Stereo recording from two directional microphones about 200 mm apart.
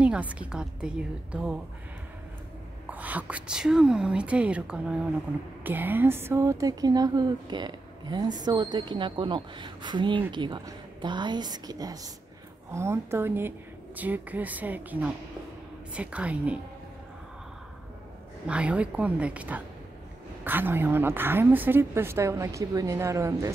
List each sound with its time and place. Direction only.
0.0 s a woman's voice: 5° right (ahead or behind)
2.9 s a woman's voice: 10° right (ahead or behind)
18.5 s a woman's voice: 5° right (ahead or behind)